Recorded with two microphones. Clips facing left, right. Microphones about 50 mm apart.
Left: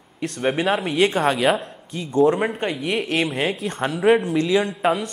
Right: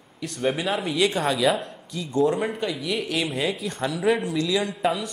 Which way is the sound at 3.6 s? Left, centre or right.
Left.